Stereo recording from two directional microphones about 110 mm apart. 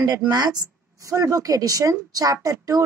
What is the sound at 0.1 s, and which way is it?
Speech, 35° right (ahead or behind).